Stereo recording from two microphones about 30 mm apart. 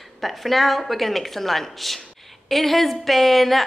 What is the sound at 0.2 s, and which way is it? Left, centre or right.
A woman's voice, centre.